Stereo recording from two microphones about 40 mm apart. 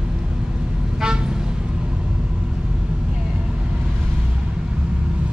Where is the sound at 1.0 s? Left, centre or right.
Centre.